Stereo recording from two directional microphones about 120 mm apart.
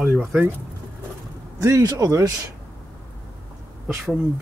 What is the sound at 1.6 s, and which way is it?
Speech, 30° right (ahead or behind).